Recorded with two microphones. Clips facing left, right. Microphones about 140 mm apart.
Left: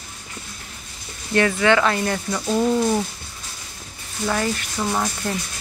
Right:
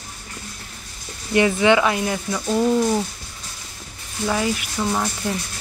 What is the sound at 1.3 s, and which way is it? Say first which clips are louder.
Speech: right 1 dB; 15° right (ahead or behind).